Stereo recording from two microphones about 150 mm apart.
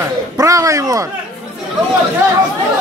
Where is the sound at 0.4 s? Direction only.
20° right (ahead or behind).